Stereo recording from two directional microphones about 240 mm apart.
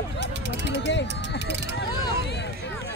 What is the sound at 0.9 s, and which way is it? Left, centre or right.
Run, left.